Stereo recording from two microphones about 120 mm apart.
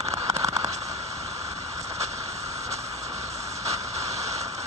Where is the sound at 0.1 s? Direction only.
25° right (ahead or behind).